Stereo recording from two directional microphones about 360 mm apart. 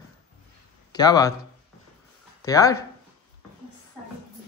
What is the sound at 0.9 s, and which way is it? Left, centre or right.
Speech, centre.